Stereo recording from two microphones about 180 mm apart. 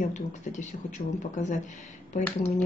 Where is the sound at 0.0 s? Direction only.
40° left (ahead or behind).